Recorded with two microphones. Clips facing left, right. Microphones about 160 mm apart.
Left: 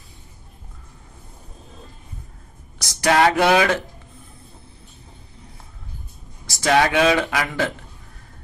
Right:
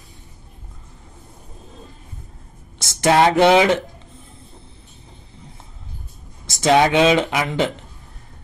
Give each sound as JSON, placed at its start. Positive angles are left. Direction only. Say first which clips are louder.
{"t": 2.8, "sound": "speech", "louder": "right 2 dB", "side_deg": -25}
{"t": 6.4, "sound": "speech", "louder": "right 3 dB", "side_deg": -20}